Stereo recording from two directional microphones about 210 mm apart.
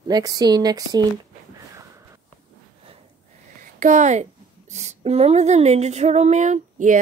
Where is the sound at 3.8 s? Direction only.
35° right (ahead or behind).